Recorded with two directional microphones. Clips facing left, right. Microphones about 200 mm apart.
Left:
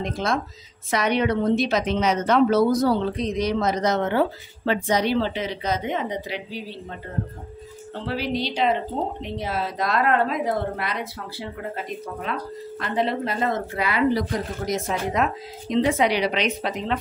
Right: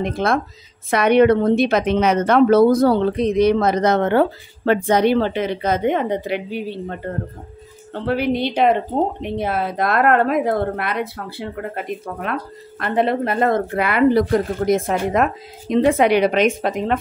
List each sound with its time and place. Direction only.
0.0 s a woman's voice: 60° right (ahead or behind)